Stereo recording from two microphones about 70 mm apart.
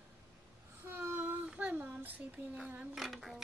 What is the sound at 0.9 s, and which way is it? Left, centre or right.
Child singing, right.